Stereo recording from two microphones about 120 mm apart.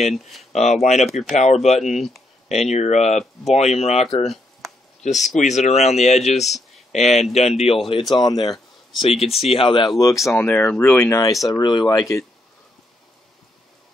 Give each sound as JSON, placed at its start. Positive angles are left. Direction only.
{"t": 0.1, "sound": "speech", "side_deg": 0}
{"t": 0.5, "sound": "speech", "side_deg": 70}
{"t": 2.0, "sound": "speech", "side_deg": 0}
{"t": 2.4, "sound": "speech", "side_deg": 65}
{"t": 4.3, "sound": "a sound", "side_deg": 0}
{"t": 5.0, "sound": "speech", "side_deg": 80}
{"t": 6.4, "sound": "a sound", "side_deg": 0}
{"t": 7.0, "sound": "speech", "side_deg": 65}
{"t": 9.0, "sound": "speech", "side_deg": 55}
{"t": 10.3, "sound": "speech", "side_deg": 15}